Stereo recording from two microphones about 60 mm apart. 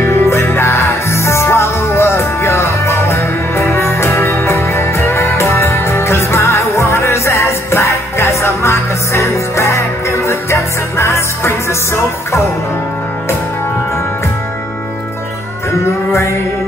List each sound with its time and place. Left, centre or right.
0.0 s music: left
16.1 s music: left